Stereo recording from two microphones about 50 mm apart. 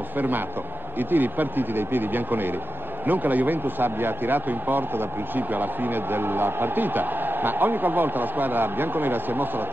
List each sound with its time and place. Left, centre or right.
0.9 s a man's voice: right